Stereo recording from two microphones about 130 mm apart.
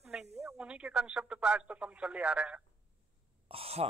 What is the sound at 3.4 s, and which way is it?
Speech, 50° right (ahead or behind).